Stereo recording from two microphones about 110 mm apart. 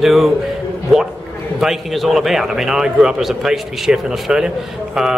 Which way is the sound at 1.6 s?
Centre (ahead or behind).